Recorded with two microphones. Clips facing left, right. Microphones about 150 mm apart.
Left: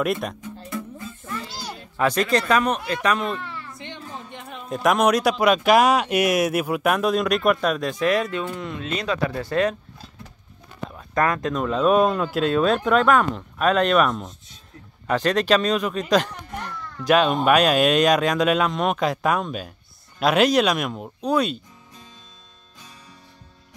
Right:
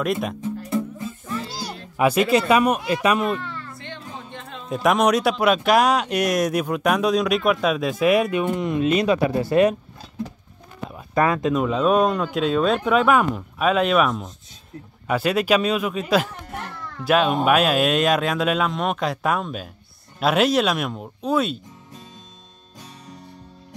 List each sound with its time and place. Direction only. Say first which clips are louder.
0.0 s speech: even; centre (ahead or behind)
0.7 s music: right 5 dB; 25° right (ahead or behind)
1.4 s speech: right 3 dB; 10° right (ahead or behind)
3.7 s music: even; 15° left (ahead or behind)
4.6 s speech: right 1 dB; centre (ahead or behind)
10.9 s speech: right 2 dB; 10° right (ahead or behind)